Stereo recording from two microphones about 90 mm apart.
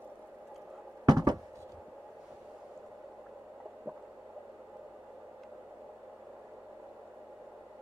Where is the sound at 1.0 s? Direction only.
50° right (ahead or behind).